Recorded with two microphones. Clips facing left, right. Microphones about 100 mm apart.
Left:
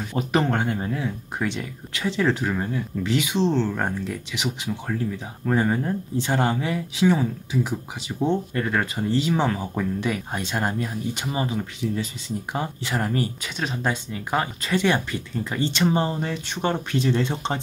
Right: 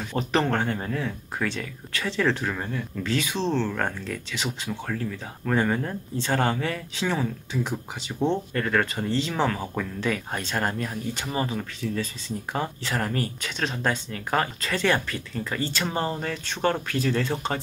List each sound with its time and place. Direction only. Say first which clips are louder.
0.1 s speech: left 1 dB; 15° left (ahead or behind)